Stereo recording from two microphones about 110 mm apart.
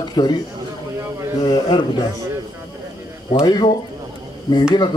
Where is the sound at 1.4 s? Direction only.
40° left (ahead or behind).